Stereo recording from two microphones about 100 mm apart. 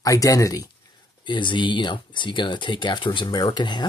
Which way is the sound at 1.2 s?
50° left (ahead or behind).